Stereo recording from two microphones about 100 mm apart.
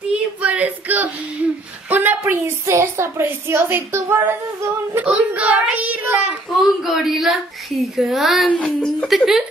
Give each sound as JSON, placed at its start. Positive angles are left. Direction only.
{"t": 0.4, "sound": "a sound", "side_deg": -15}
{"t": 1.9, "sound": "a woman's voice", "side_deg": -20}
{"t": 5.0, "sound": "a child's voice", "side_deg": -10}
{"t": 6.8, "sound": "speech", "side_deg": 0}
{"t": 8.5, "sound": "speech", "side_deg": 10}
{"t": 9.0, "sound": "speech", "side_deg": -5}